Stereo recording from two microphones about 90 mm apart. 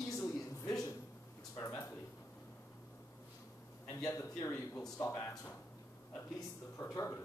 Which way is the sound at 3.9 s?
35° left (ahead or behind).